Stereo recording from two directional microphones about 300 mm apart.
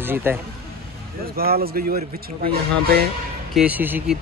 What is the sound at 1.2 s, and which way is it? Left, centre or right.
Speech, right.